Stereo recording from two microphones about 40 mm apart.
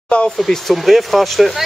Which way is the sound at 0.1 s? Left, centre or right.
Left.